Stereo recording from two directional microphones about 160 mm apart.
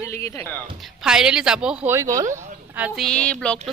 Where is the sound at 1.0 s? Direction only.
5° right (ahead or behind).